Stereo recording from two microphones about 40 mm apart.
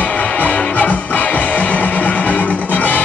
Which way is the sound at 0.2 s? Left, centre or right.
Left.